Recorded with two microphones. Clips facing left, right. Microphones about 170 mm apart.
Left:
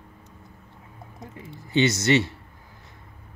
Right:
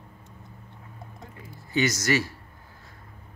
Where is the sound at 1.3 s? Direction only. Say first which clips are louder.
Left 4 dB; 25° left (ahead or behind).